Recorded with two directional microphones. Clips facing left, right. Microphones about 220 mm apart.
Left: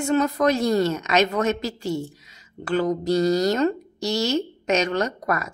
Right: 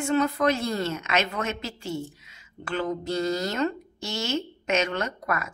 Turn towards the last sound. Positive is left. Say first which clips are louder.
# left 5 dB
turn(degrees=40)  # may be behind; listen again after turning